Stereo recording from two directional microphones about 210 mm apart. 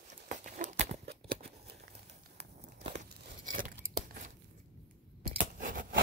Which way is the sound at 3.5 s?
40° right (ahead or behind).